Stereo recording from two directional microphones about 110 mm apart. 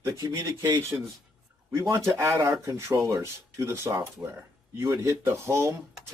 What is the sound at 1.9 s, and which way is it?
Speech, 25° right (ahead or behind).